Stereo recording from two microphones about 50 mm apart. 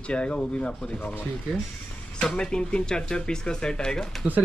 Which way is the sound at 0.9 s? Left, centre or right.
Left.